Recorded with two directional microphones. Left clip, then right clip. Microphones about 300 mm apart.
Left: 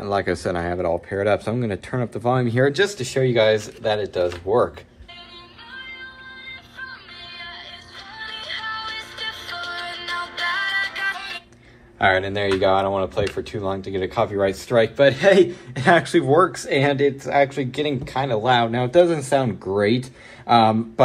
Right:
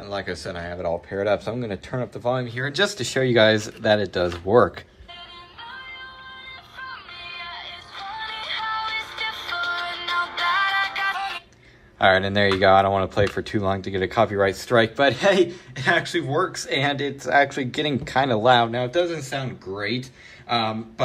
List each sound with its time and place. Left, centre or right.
0.0 s speech: centre
2.7 s speech: centre
3.0 s speech: right
7.2 s music: centre
8.6 s music: centre
9.5 s music: centre
12.0 s speech: centre
15.7 s speech: centre